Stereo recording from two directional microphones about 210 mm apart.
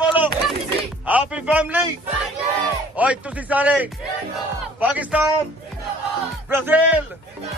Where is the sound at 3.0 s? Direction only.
5° right (ahead or behind).